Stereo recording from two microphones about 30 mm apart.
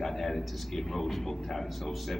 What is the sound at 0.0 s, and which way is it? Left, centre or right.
A man's voice, centre.